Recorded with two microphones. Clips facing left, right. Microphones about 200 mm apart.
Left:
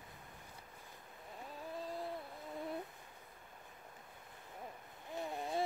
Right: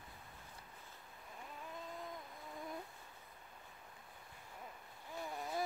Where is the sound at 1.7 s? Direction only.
35° left (ahead or behind).